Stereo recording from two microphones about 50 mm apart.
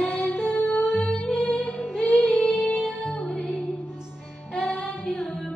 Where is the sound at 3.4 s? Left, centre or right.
Centre.